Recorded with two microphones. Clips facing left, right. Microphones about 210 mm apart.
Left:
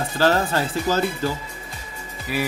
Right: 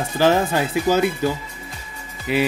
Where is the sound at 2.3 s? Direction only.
20° right (ahead or behind).